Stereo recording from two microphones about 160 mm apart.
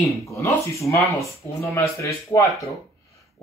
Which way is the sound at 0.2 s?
20° left (ahead or behind).